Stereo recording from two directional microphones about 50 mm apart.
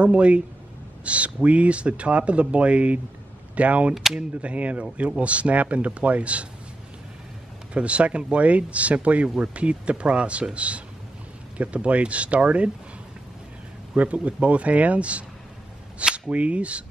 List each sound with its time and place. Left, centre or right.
0.0 s speech: right
3.9 s speech: centre
4.4 s speech: right
7.7 s speech: right
13.9 s speech: right